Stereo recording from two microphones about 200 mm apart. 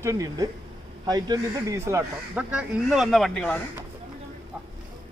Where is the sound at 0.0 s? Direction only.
15° right (ahead or behind); by 3.5 s 5° left (ahead or behind).